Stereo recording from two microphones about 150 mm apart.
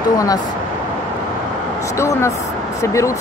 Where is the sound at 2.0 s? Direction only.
20° left (ahead or behind).